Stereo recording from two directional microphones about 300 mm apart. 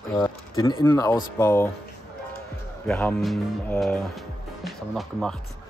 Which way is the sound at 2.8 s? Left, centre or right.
Centre.